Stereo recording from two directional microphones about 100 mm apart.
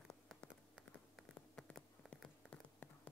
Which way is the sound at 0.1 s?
10° left (ahead or behind).